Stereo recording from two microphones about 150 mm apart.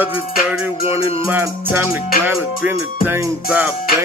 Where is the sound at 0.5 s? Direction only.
15° right (ahead or behind).